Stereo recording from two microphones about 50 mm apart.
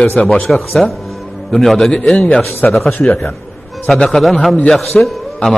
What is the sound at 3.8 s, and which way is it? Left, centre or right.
Speech, centre.